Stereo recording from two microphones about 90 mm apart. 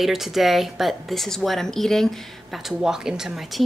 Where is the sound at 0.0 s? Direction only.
5° right (ahead or behind).